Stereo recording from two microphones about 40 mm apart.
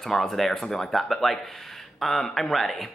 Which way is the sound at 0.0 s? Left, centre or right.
Centre.